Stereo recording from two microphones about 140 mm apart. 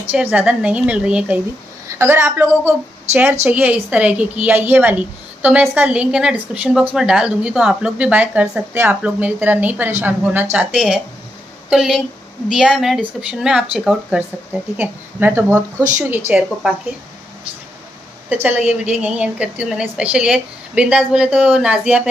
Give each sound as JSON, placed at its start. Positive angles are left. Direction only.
{"t": 0.1, "sound": "a woman's voice", "side_deg": -10}
{"t": 18.3, "sound": "a woman's voice", "side_deg": -15}